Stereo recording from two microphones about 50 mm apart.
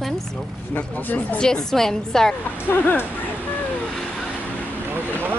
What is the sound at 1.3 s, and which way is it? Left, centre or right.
A woman's voice, centre.